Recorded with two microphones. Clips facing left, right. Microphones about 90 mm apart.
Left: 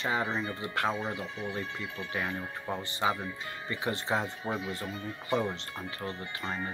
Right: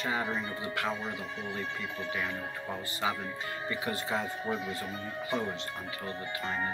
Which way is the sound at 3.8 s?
25° left (ahead or behind).